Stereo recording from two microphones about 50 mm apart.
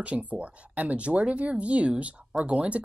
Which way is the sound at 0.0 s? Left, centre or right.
Right.